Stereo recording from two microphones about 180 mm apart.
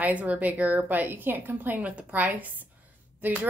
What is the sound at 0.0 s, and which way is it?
A woman's voice, 10° right (ahead or behind).